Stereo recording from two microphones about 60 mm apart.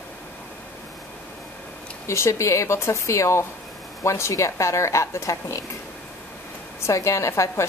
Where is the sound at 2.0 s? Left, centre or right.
Left.